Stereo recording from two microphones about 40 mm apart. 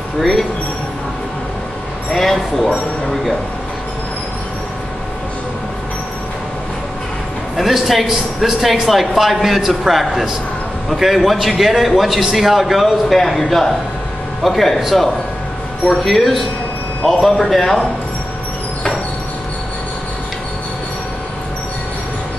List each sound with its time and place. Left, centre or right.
0.2 s speech: centre
2.0 s speech: centre
7.5 s speech: centre
16.0 s speech: centre